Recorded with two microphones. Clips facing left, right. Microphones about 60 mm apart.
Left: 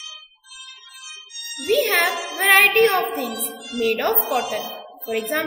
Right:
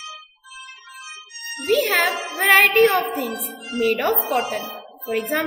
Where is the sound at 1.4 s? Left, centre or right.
Right.